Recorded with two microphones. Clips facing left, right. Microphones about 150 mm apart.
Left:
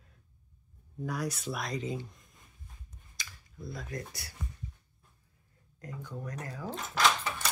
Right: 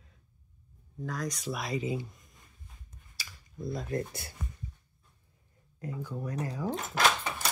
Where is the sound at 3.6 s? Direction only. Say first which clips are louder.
Right 7 dB; 25° right (ahead or behind).